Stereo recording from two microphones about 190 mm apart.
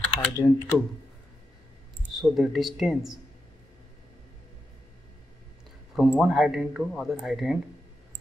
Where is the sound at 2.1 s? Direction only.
Centre (ahead or behind).